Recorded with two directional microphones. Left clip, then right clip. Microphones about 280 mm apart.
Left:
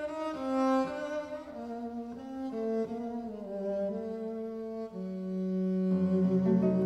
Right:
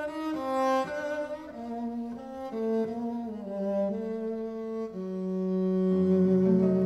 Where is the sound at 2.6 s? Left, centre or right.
Right.